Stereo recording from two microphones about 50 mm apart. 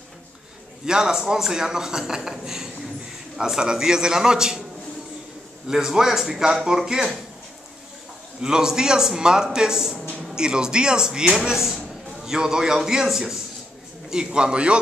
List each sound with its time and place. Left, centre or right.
0.8 s a man's voice: centre
5.7 s a man's voice: centre
8.4 s a man's voice: centre